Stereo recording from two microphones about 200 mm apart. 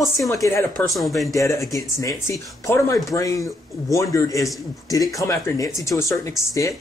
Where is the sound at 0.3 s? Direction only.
15° left (ahead or behind).